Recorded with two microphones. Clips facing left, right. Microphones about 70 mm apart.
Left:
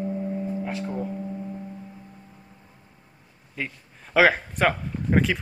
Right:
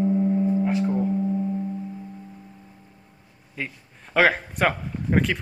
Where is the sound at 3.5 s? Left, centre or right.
Centre.